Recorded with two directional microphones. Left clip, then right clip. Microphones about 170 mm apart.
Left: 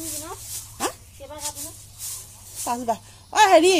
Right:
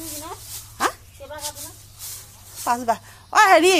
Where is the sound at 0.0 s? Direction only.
20° right (ahead or behind).